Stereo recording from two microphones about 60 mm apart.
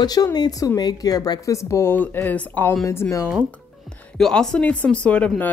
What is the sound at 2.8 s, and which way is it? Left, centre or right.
Speech, left.